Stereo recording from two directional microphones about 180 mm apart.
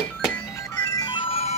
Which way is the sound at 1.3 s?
35° left (ahead or behind).